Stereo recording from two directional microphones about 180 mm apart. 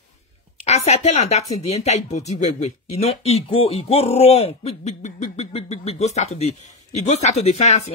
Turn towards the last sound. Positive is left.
turn(degrees=40)  # may be behind; listen again after turning